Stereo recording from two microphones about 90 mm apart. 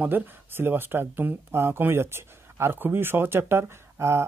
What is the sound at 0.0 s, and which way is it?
Speech, 20° right (ahead or behind).